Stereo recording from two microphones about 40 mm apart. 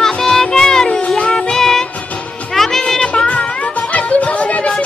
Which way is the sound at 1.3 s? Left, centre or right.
Centre.